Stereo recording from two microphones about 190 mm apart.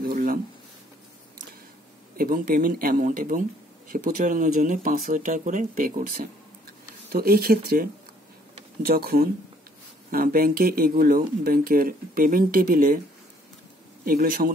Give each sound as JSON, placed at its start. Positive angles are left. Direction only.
{"t": 0.0, "sound": "a sound", "side_deg": -50}
{"t": 2.1, "sound": "speech", "side_deg": -50}
{"t": 14.0, "sound": "speech", "side_deg": -50}